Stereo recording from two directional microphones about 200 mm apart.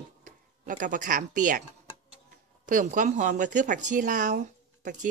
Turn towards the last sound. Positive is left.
turn(degrees=-40)  # may be behind; listen again after turning